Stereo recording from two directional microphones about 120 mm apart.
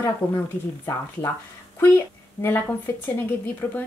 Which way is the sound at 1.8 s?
20° left (ahead or behind).